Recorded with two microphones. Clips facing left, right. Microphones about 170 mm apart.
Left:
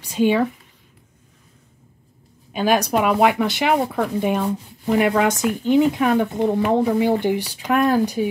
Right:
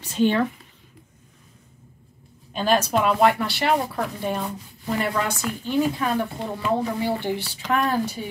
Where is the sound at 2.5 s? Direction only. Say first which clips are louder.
Left 3 dB; 10° left (ahead or behind).